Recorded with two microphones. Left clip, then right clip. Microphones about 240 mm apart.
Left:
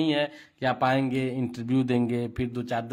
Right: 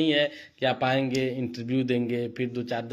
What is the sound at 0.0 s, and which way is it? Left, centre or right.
Speech, left.